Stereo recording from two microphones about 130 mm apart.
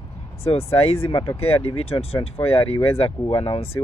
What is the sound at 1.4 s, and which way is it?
Speech, 50° left (ahead or behind).